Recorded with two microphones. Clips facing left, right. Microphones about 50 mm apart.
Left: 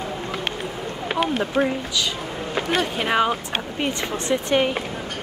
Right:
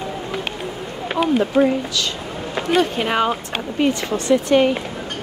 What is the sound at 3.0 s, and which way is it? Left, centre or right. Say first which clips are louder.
Speech: right 1 dB; centre.